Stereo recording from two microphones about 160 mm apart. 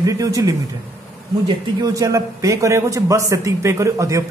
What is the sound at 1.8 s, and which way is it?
A man's voice, 20° right (ahead or behind).